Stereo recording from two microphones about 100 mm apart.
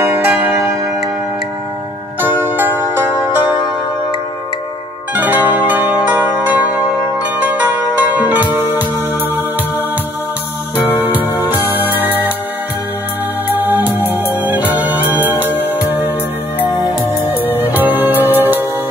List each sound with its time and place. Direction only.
0.1 s zither: 20° right (ahead or behind)
2.2 s music: 20° right (ahead or behind)
5.1 s zither: 15° right (ahead or behind)
7.3 s music: 15° right (ahead or behind)
11.0 s music: 20° right (ahead or behind)
13.6 s music: 20° right (ahead or behind)
15.4 s music: 20° left (ahead or behind)
15.8 s music: 20° right (ahead or behind)
17.2 s music: 20° right (ahead or behind)